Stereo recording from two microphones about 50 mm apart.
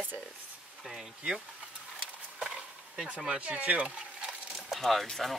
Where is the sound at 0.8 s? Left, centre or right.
Centre.